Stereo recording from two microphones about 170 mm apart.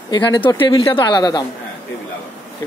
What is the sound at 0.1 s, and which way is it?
Speech, 25° left (ahead or behind).